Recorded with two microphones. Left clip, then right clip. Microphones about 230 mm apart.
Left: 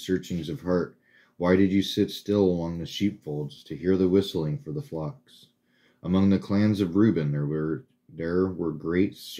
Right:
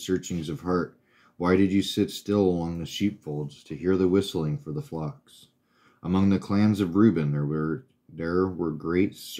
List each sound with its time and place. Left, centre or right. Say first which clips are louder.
0.0 s speech: even; centre